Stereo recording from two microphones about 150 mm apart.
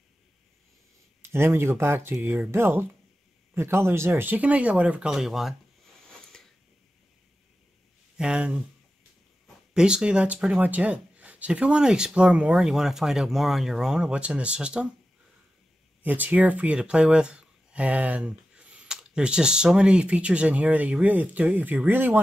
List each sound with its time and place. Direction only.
1.2 s speech: 15° right (ahead or behind); by 5.6 s centre (ahead or behind)
6.0 s a sound: 5° left (ahead or behind)
8.2 s speech: 5° right (ahead or behind)
9.8 s speech: 5° right (ahead or behind)
16.0 s speech: 10° right (ahead or behind)